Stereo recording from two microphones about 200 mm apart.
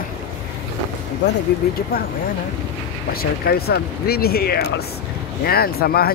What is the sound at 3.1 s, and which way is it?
Speech, 50° left (ahead or behind).